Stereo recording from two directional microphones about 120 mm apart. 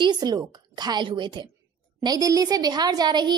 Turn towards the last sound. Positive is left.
turn(degrees=-35)  # may be behind; listen again after turning